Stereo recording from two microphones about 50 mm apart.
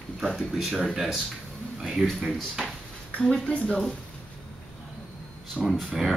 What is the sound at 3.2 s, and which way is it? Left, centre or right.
Speech, centre.